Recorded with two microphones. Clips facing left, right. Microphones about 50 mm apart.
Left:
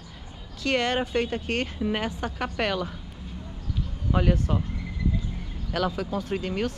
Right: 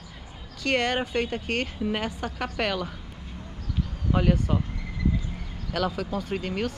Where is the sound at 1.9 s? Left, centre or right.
Centre.